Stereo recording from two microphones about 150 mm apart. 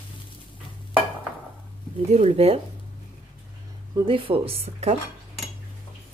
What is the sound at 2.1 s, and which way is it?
Speech, 45° right (ahead or behind).